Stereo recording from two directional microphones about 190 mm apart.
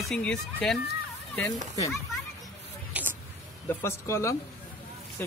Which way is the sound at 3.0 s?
5° right (ahead or behind).